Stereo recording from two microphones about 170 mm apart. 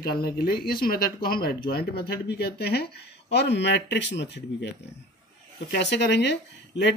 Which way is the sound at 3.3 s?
85° left.